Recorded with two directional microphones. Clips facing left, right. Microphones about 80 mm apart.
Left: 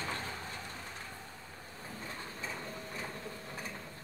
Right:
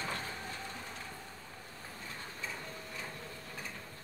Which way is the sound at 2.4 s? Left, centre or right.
Left.